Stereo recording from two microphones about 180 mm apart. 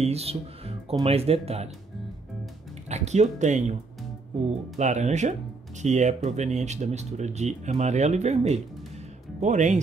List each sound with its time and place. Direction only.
0.0 s music: 35° right (ahead or behind)
1.0 s speech: 35° right (ahead or behind)
2.9 s speech: 40° right (ahead or behind)
4.7 s speech: 40° right (ahead or behind)